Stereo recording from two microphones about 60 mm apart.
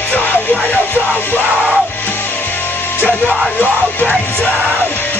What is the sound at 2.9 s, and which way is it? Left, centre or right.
Music, left.